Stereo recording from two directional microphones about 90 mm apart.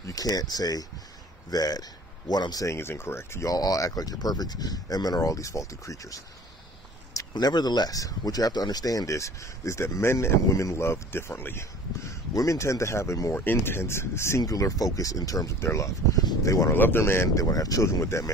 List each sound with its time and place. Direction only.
0.0 s speech: 45° left (ahead or behind)
2.6 s speech: 30° left (ahead or behind)
16.7 s speech: 25° left (ahead or behind)